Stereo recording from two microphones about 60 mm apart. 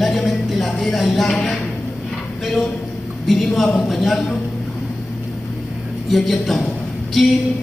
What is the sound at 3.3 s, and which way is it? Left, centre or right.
Speech, centre.